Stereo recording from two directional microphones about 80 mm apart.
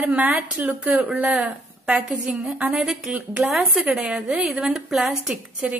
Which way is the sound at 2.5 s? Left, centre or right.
Centre.